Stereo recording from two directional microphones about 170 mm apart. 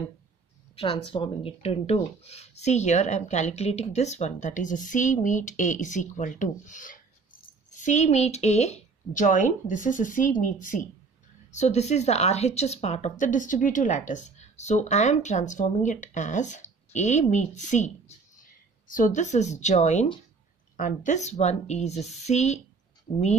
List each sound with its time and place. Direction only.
0.7 s speech: 30° left (ahead or behind)